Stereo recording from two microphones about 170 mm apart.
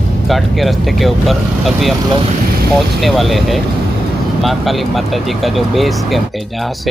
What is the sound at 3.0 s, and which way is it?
Speech, centre (ahead or behind).